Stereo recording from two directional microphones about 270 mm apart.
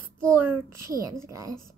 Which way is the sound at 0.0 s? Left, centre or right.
Centre.